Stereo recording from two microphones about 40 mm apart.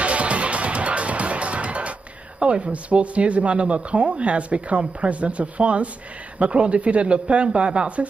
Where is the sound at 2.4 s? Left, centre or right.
Right.